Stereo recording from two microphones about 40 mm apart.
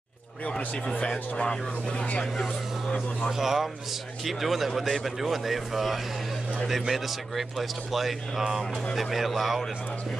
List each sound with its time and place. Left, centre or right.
1.3 s speech: left
3.3 s speech: centre